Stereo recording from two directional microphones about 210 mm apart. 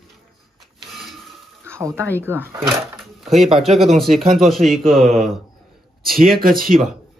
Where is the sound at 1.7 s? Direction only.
10° right (ahead or behind).